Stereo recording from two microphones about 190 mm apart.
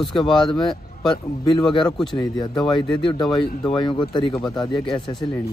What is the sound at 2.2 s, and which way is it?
Speech, 20° left (ahead or behind).